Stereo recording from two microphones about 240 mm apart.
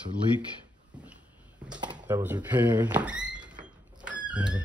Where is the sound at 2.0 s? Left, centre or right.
Centre.